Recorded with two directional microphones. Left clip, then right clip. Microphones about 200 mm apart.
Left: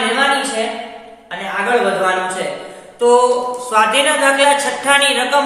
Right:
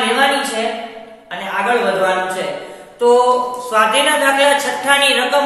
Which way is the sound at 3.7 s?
20° left (ahead or behind).